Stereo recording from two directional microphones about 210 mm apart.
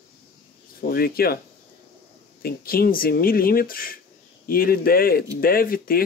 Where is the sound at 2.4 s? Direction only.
45° left (ahead or behind).